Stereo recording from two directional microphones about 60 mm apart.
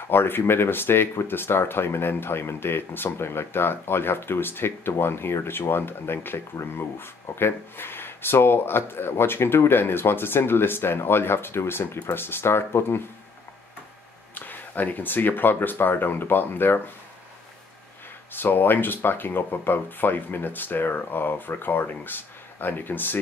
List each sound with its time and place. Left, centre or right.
0.1 s speech: left
14.3 s speech: left
18.3 s speech: left